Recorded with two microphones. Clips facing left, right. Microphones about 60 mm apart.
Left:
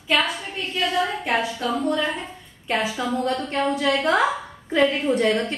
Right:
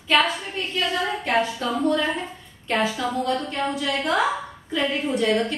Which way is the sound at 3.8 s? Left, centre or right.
Left.